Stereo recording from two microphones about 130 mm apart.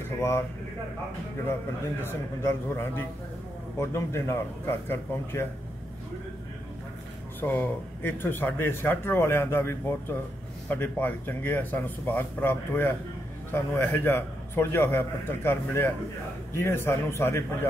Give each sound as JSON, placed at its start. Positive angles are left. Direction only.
{"t": 2.0, "sound": "a man's voice", "side_deg": 15}
{"t": 7.3, "sound": "a man's voice", "side_deg": 15}